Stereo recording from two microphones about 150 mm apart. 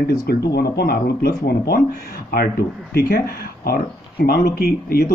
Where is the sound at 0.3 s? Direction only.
90° left.